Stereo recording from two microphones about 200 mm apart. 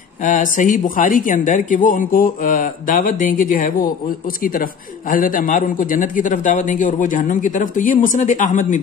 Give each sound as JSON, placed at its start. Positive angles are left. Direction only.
{"t": 0.2, "sound": "a woman's voice", "side_deg": 40}
{"t": 5.1, "sound": "a man's voice", "side_deg": 45}